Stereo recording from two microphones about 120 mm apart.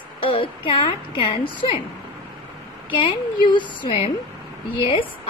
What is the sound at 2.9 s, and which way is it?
A woman's voice, 45° left (ahead or behind).